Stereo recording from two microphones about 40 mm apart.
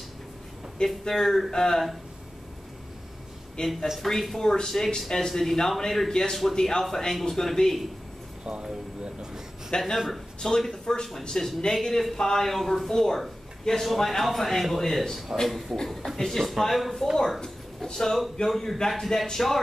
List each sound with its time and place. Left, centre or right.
0.8 s a man's voice: centre
1.5 s a man's voice: centre
3.6 s a man's voice: centre
4.4 s a man's voice: centre
6.5 s a man's voice: centre
8.5 s speech: right
9.7 s a man's voice: centre
9.9 s a man's voice: centre
10.4 s a man's voice: centre
17.9 s a man's voice: centre